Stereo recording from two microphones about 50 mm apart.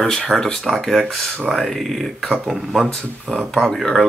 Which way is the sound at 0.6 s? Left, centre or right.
Centre.